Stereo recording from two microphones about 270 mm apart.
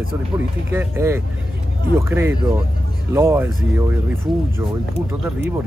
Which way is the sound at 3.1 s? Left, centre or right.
Centre.